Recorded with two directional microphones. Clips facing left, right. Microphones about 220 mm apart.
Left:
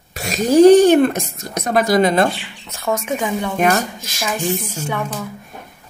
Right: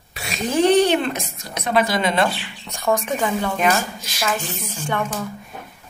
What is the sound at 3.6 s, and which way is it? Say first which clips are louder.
Speech: left 3 dB; 45° left (ahead or behind).